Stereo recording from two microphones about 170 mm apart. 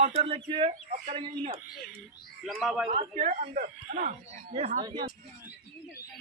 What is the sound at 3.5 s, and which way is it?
Speech, 60° right (ahead or behind).